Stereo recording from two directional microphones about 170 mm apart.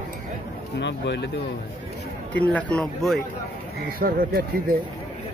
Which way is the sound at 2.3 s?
10° left (ahead or behind).